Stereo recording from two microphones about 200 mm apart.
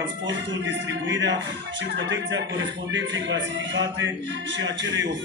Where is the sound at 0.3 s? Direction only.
65° right (ahead or behind).